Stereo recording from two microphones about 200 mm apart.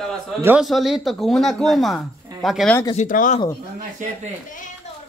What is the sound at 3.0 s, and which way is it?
Speech, 40° left (ahead or behind).